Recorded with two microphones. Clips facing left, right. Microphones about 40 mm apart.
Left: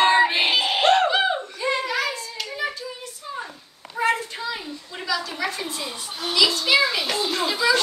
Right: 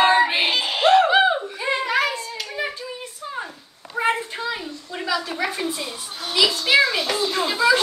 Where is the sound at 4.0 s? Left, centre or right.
Right.